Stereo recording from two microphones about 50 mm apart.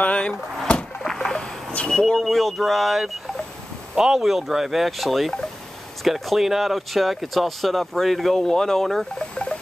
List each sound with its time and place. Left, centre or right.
0.0 s vehicle: left
1.0 s vehicle: centre
1.9 s speech: centre
2.2 s speech: centre
9.3 s music: centre